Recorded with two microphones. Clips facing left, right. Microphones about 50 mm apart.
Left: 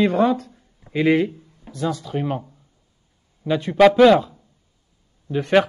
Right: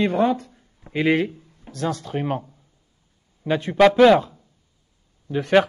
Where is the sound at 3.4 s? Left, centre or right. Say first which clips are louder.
Left 1 dB; centre.